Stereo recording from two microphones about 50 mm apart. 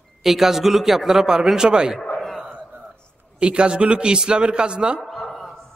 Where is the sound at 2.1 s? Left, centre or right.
Centre.